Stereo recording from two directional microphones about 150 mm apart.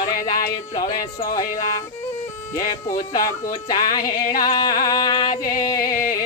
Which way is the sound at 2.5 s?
25° left (ahead or behind).